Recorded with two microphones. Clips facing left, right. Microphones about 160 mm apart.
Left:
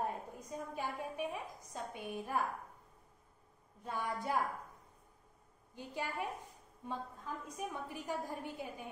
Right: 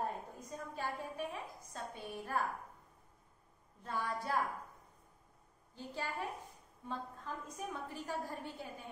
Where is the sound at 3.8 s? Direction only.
15° left (ahead or behind).